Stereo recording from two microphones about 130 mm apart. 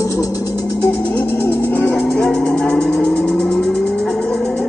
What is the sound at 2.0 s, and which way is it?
Vehicle, 5° left (ahead or behind).